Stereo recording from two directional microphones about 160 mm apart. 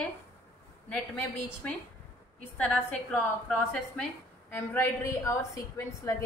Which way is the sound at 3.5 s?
5° left (ahead or behind).